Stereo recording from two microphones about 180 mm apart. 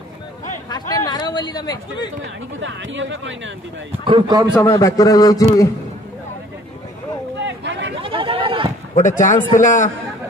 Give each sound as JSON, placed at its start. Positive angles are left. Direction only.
{"t": 0.7, "sound": "chatter", "side_deg": 20}
{"t": 2.6, "sound": "speech", "side_deg": -90}
{"t": 4.0, "sound": "a man's voice", "side_deg": -25}
{"t": 4.6, "sound": "a man's voice", "side_deg": 15}
{"t": 7.4, "sound": "chatter", "side_deg": -80}
{"t": 8.0, "sound": "chatter", "side_deg": -30}
{"t": 8.9, "sound": "a man's voice", "side_deg": 45}